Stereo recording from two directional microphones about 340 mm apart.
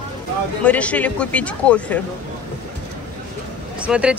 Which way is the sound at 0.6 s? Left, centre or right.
Centre.